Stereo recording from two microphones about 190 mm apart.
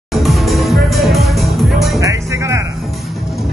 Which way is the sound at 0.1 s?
Centre (ahead or behind).